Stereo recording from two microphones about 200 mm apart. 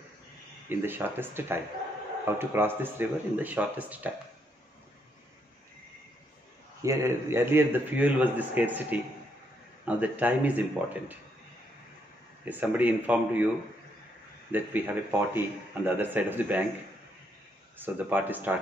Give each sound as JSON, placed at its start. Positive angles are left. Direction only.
{"t": 0.7, "sound": "a man's voice", "side_deg": -10}
{"t": 6.8, "sound": "a man's voice", "side_deg": -15}
{"t": 12.4, "sound": "a man's voice", "side_deg": -10}
{"t": 14.5, "sound": "a man's voice", "side_deg": -10}
{"t": 17.7, "sound": "a man's voice", "side_deg": -10}